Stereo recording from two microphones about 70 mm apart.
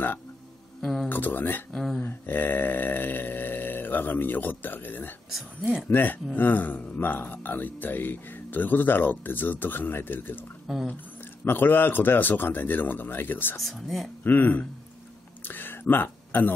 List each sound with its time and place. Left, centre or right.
0.7 s speech: centre
1.0 s speech: left
1.7 s speech: centre
2.0 s speech: left
10.7 s speech: centre
11.4 s speech: left
13.6 s speech: centre
14.2 s speech: left
15.4 s a sound: left